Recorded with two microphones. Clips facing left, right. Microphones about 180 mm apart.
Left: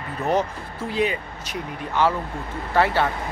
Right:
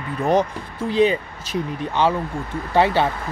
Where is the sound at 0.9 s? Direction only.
30° right (ahead or behind).